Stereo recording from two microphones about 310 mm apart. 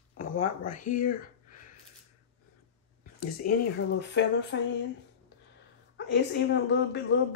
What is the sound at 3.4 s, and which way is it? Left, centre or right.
Speech, left.